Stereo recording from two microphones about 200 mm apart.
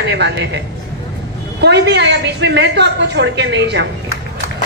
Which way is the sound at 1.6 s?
60° right (ahead or behind).